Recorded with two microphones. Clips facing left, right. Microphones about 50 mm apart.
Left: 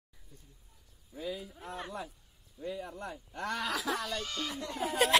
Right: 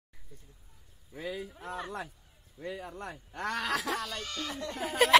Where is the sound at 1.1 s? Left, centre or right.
Right.